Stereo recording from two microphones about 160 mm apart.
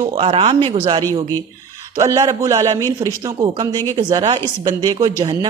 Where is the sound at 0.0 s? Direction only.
35° right (ahead or behind).